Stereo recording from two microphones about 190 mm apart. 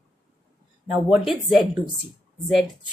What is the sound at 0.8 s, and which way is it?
A woman's voice, 5° right (ahead or behind).